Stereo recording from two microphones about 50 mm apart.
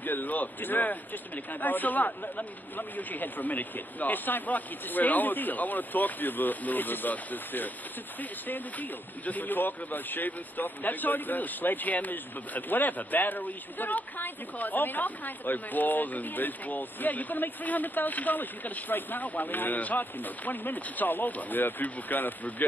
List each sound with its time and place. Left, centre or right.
0.0 s speech: left